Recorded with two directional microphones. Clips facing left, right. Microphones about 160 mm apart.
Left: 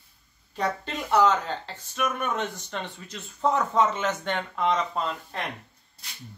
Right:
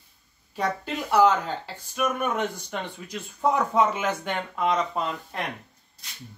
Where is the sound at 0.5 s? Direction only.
10° right (ahead or behind).